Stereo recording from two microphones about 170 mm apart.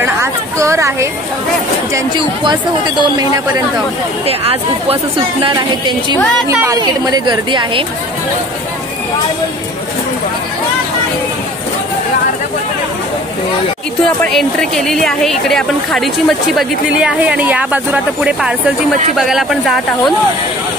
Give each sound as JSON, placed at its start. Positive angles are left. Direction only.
{"t": 0.0, "sound": "a sound", "side_deg": -15}
{"t": 2.0, "sound": "speech", "side_deg": -25}
{"t": 4.8, "sound": "speech", "side_deg": -30}
{"t": 6.5, "sound": "speech", "side_deg": -15}
{"t": 14.2, "sound": "a woman's voice", "side_deg": 5}